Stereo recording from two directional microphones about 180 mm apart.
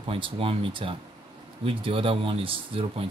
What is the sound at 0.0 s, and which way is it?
Speech, 30° right (ahead or behind).